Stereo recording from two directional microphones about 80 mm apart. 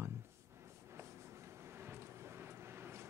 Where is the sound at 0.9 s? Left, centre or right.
Right.